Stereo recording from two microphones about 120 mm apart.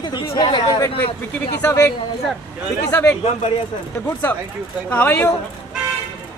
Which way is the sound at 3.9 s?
15° left (ahead or behind).